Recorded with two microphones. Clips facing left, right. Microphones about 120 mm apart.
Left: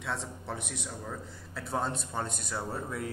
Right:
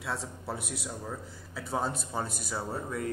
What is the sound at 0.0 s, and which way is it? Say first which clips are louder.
A man's voice: right 1 dB; 5° right (ahead or behind).